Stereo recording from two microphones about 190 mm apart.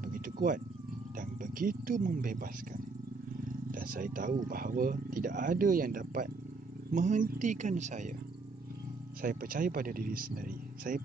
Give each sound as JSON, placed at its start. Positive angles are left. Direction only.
{"t": 0.0, "sound": "cat", "side_deg": -45}
{"t": 1.4, "sound": "a man's voice", "side_deg": -45}
{"t": 9.2, "sound": "speech", "side_deg": -45}